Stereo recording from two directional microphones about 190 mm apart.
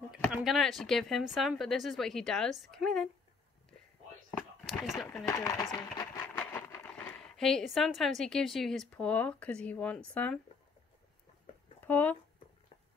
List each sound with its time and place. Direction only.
0.1 s a woman's voice: centre (ahead or behind)
4.9 s speech: 10° left (ahead or behind)
11.8 s speech: 10° left (ahead or behind)